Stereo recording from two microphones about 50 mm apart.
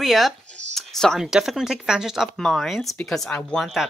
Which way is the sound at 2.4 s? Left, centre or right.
Centre.